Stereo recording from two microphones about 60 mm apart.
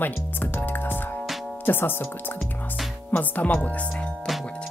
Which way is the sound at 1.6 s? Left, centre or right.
Left.